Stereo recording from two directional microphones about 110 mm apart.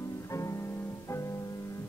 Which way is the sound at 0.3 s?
25° left (ahead or behind).